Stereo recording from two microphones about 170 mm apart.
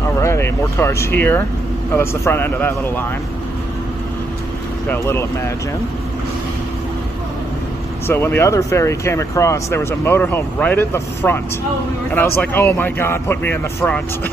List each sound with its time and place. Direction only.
0.1 s speech: 15° left (ahead or behind)
4.8 s speech: 15° left (ahead or behind)
8.1 s speech: 15° left (ahead or behind)